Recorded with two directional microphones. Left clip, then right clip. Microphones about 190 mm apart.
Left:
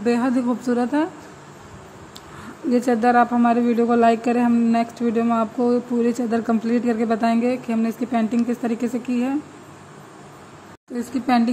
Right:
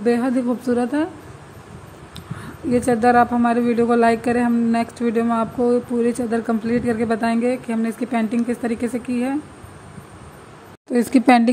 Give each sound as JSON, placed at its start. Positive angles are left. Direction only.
{"t": 0.0, "sound": "a man's voice", "side_deg": 0}
{"t": 2.7, "sound": "a man's voice", "side_deg": 0}
{"t": 10.9, "sound": "speech", "side_deg": -40}